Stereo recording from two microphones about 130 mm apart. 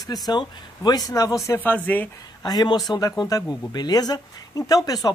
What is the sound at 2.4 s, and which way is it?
Speech, 30° left (ahead or behind).